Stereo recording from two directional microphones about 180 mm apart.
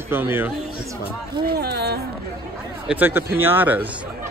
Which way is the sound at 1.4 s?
60° right (ahead or behind).